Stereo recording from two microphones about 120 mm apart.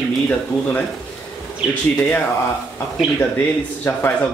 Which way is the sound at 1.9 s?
10° left (ahead or behind).